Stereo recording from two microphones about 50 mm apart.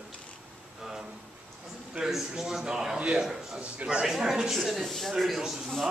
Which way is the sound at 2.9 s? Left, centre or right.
Right.